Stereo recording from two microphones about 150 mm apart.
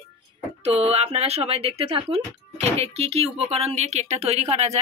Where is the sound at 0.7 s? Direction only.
45° right (ahead or behind).